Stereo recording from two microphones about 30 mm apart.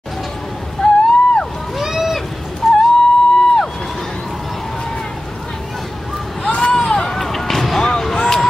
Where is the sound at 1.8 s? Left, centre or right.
Centre.